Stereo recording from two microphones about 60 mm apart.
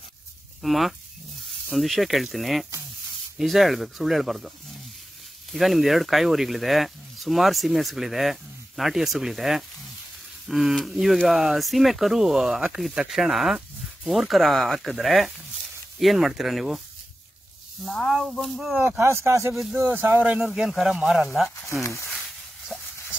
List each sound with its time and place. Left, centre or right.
0.6 s speech: centre
17.8 s speech: centre
18.9 s speech: right
19.7 s speech: right
20.4 s speech: centre
22.7 s a sound: centre